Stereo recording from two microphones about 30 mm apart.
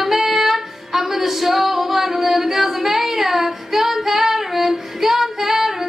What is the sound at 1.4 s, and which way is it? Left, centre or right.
Singing, centre.